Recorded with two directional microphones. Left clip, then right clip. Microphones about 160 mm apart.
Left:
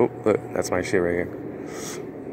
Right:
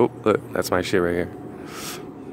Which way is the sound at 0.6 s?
50° right (ahead or behind).